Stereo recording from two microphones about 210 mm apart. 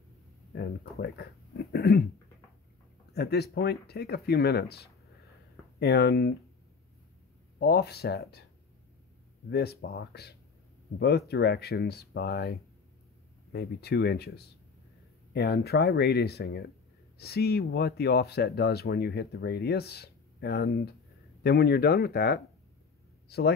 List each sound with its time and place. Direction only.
0.5 s speech: 45° left (ahead or behind)
3.1 s speech: 50° left (ahead or behind)
7.5 s speech: 50° left (ahead or behind)
9.5 s speech: 50° left (ahead or behind)